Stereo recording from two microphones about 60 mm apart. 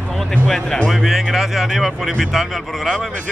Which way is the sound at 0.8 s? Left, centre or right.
Centre.